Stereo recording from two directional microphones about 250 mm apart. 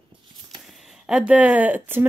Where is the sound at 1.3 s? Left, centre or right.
Centre.